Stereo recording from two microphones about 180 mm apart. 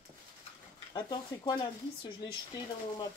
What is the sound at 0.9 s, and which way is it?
Speech, 20° left (ahead or behind).